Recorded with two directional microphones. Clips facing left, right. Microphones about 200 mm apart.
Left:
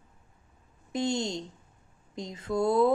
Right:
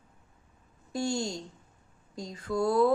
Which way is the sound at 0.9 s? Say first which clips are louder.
Left 2 dB; 20° left (ahead or behind).